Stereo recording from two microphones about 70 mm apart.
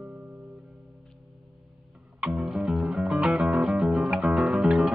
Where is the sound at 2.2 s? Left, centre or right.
Centre.